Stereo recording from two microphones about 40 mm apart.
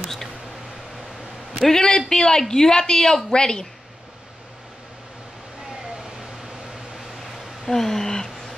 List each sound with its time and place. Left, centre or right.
0.0 s a sound: centre
1.6 s a man's voice: centre
5.9 s vehicle: centre
7.6 s speech: centre